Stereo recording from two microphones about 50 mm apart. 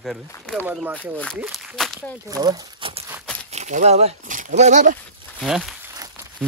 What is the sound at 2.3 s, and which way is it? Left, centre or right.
Speech, right.